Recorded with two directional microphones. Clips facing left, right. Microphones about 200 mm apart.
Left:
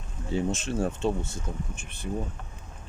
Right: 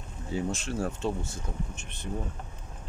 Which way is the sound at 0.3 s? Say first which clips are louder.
Left 3 dB; 20° left (ahead or behind).